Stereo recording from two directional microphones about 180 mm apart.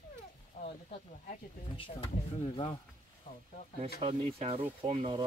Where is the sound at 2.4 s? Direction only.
30° left (ahead or behind).